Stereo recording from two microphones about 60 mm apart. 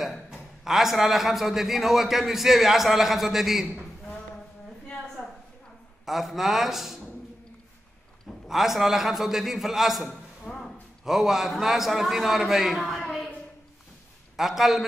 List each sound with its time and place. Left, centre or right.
0.0 s a man's voice: centre
5.2 s a sound: centre
6.0 s a man's voice: centre
8.5 s a man's voice: centre
10.4 s a sound: centre
11.1 s a man's voice: centre
14.3 s a man's voice: centre